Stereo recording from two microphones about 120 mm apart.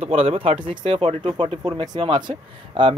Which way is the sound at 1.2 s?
40° right (ahead or behind).